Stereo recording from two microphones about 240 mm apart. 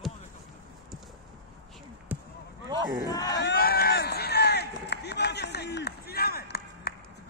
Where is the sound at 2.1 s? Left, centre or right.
Centre.